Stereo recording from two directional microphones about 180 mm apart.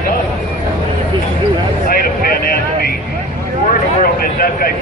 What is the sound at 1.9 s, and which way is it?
Vehicle, 55° left (ahead or behind).